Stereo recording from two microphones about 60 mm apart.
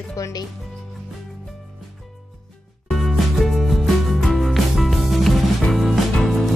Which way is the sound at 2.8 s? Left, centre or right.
Centre.